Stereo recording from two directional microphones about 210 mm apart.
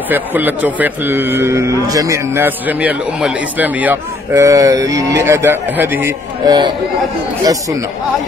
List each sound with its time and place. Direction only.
0.1 s a man's voice: 10° right (ahead or behind)